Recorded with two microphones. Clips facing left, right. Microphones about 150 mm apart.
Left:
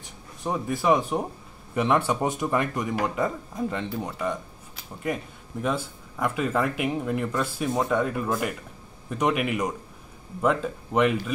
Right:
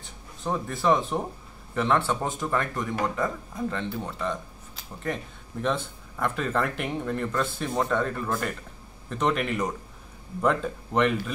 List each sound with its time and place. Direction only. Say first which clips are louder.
0.0 s speech: left 1 dB; 15° left (ahead or behind)